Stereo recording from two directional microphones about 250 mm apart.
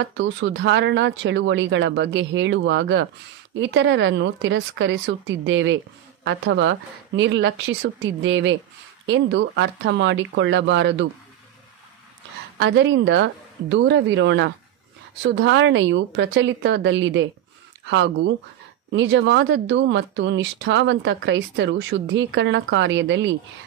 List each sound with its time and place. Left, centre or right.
0.0 s speech: right
12.5 s speech: right